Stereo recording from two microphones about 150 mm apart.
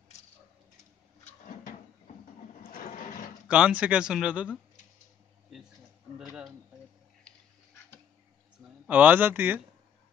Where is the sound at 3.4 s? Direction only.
10° right (ahead or behind).